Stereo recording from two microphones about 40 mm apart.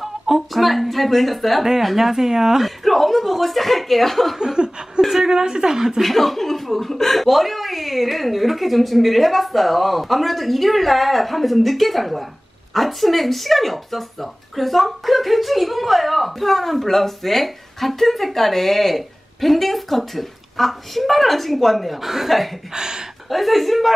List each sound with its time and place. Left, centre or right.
0.0 s a woman's voice: centre
2.6 s speech: centre
4.4 s laughter: right
5.1 s a woman's voice: centre
5.9 s speech: centre
22.8 s a woman's voice: centre
23.3 s speech: centre